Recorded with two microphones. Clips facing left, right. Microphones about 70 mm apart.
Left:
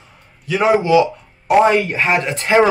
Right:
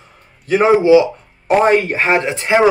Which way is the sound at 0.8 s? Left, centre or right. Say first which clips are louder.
Right 4 dB; right.